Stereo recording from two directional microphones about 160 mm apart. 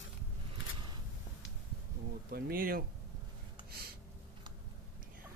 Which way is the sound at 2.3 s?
70° right (ahead or behind).